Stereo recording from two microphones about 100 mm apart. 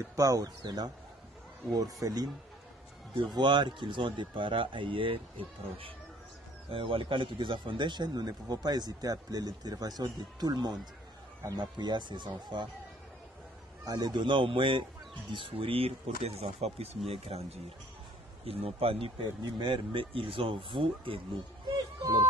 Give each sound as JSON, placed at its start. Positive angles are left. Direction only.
{"t": 0.1, "sound": "speech", "side_deg": -35}
{"t": 3.3, "sound": "a man's voice", "side_deg": -50}
{"t": 13.8, "sound": "speech", "side_deg": -40}
{"t": 18.4, "sound": "speech", "side_deg": -80}
{"t": 19.4, "sound": "speech", "side_deg": -55}
{"t": 22.0, "sound": "speech", "side_deg": -45}